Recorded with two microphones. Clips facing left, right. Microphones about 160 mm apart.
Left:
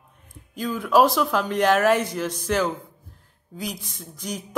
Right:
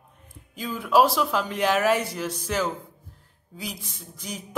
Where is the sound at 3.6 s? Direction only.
5° right (ahead or behind).